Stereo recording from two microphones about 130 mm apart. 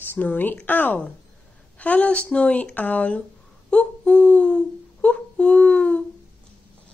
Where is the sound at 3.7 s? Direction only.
10° left (ahead or behind).